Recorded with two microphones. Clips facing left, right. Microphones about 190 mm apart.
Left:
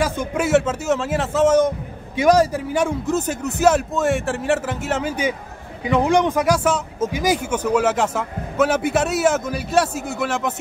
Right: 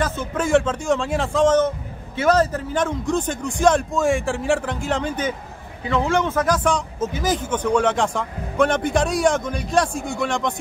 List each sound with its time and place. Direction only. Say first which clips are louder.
0.0 s speech: left 2 dB; 10° left (ahead or behind)